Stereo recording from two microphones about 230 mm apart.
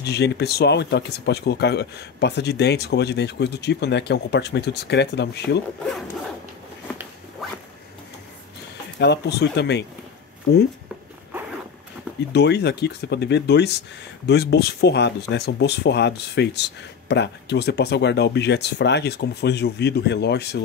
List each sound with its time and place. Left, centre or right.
0.0 s speech: left
8.9 s speech: left
12.3 s speech: left